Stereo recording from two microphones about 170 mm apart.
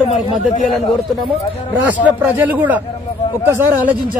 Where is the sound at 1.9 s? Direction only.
10° right (ahead or behind).